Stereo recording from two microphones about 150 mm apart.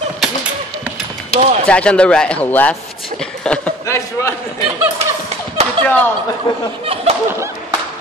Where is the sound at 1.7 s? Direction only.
5° left (ahead or behind).